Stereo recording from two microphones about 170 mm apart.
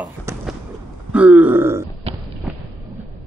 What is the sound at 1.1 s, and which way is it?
Grunt, 10° right (ahead or behind).